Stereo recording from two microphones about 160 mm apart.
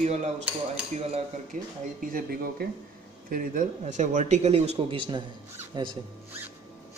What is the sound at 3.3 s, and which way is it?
Speech, 55° right (ahead or behind).